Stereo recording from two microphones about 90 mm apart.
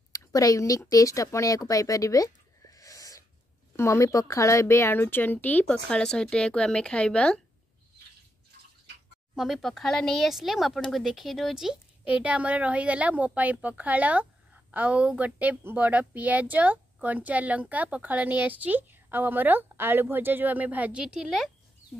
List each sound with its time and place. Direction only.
0.1 s a woman's voice: 40° left (ahead or behind); by 7.3 s 10° left (ahead or behind)
9.3 s speech: 5° right (ahead or behind)
12.1 s speech: 15° right (ahead or behind)
21.0 s speech: 5° right (ahead or behind)